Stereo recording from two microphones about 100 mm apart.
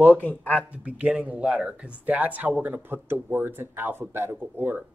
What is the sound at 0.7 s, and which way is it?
Speech, 10° right (ahead or behind).